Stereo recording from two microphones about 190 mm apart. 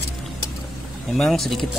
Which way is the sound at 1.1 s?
Centre (ahead or behind).